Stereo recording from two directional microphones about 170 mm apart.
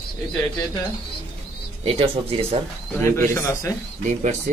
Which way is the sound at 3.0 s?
15° left (ahead or behind).